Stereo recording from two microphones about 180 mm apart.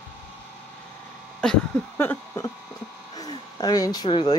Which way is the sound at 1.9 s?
15° left (ahead or behind).